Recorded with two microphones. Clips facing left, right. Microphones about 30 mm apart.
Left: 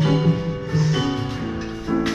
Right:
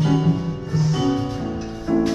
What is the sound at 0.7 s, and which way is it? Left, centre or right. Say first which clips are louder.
Music: even; left.